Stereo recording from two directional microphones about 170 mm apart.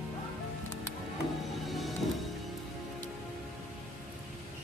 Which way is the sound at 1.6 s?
Centre (ahead or behind).